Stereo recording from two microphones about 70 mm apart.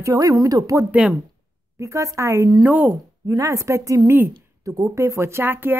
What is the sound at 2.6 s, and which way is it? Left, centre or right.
Speech, right.